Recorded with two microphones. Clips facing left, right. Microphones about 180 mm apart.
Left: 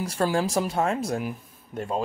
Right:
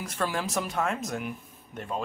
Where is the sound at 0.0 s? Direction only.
30° left (ahead or behind).